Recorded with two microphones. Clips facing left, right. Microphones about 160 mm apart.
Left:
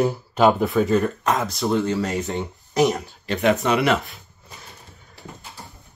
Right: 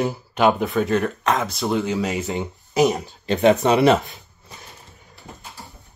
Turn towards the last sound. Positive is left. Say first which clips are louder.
# right 4 dB
turn(degrees=-25)  # may be behind; listen again after turning